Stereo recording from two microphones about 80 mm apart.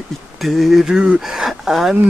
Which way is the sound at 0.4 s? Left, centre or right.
Centre.